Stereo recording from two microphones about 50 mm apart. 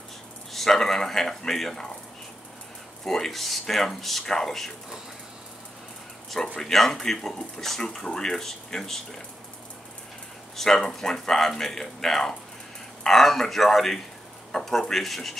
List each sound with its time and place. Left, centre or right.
0.5 s speech: centre
3.1 s speech: centre
6.3 s speech: centre
10.5 s speech: centre